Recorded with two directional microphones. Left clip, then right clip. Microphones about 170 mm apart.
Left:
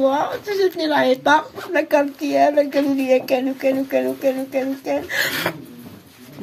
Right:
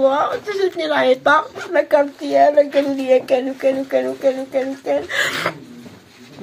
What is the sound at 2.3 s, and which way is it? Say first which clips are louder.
Speech: right 3 dB; 20° left (ahead or behind).